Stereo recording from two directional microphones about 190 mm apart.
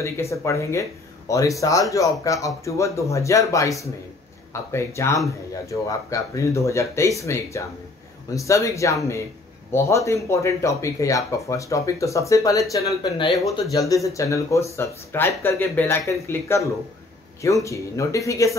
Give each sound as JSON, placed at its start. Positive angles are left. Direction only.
{"t": 0.0, "sound": "speech", "side_deg": 15}